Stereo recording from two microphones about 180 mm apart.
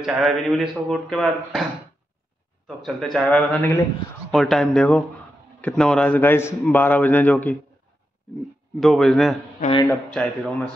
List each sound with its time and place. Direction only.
0.0 s a man's voice: centre (ahead or behind)
2.6 s a man's voice: centre (ahead or behind)
8.7 s a man's voice: centre (ahead or behind)
9.6 s speech: 30° left (ahead or behind)
9.8 s a man's voice: 5° left (ahead or behind)